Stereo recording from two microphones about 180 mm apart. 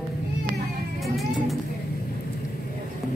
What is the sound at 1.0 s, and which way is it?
Music, centre (ahead or behind).